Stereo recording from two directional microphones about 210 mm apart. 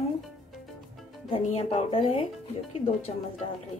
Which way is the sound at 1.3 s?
25° left (ahead or behind).